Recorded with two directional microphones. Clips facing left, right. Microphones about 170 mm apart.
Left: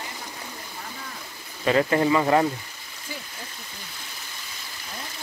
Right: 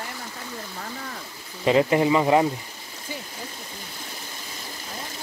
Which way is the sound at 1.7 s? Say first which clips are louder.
Right 2 dB; 20° right (ahead or behind).